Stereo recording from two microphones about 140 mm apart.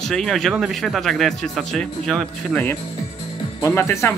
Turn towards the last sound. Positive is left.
turn(degrees=20)  # may be behind; listen again after turning